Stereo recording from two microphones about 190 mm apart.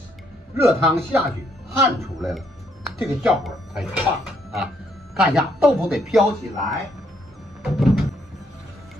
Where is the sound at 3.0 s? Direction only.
Centre (ahead or behind).